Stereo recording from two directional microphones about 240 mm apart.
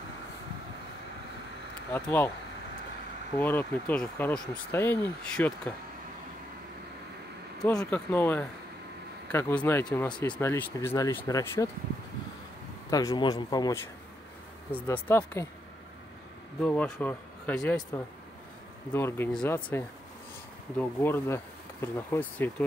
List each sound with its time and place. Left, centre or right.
2.0 s speech: centre
3.3 s speech: centre
7.6 s speech: centre
12.9 s speech: centre
16.6 s speech: centre